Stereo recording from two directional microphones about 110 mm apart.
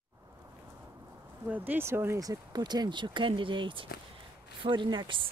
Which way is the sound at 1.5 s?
15° right (ahead or behind).